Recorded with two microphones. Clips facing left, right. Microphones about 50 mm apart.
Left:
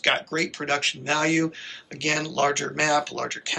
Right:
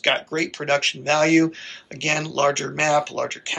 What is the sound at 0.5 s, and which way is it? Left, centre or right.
Speech, right.